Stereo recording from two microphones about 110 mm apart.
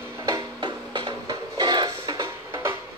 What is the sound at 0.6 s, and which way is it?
Music, 45° right (ahead or behind).